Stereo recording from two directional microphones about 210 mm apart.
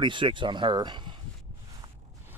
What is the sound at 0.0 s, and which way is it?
Speech, 20° right (ahead or behind).